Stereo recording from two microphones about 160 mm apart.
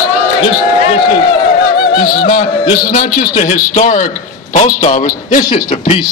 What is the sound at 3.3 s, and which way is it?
A man's voice, 55° left (ahead or behind).